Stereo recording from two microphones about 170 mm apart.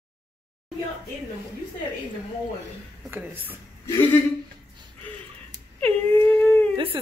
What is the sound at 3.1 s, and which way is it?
Speech, 10° right (ahead or behind).